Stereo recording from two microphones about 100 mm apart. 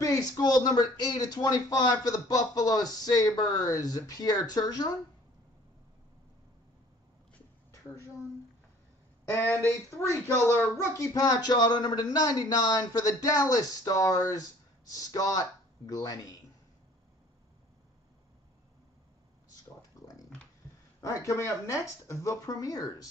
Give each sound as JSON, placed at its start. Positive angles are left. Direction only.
{"t": 0.0, "sound": "speech", "side_deg": 35}
{"t": 9.3, "sound": "speech", "side_deg": 20}
{"t": 11.0, "sound": "speech", "side_deg": 40}
{"t": 20.0, "sound": "a sound", "side_deg": 35}
{"t": 21.0, "sound": "speech", "side_deg": 30}